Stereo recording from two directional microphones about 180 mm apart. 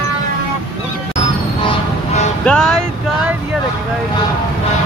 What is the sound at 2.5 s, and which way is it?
Music, 5° left (ahead or behind).